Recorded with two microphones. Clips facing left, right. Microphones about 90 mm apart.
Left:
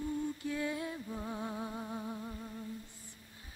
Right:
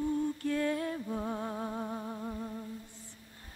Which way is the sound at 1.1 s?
35° right (ahead or behind).